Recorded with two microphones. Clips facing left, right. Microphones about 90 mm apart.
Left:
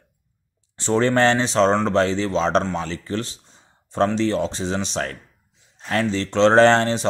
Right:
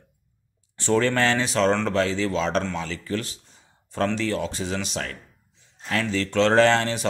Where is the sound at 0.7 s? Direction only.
25° left (ahead or behind).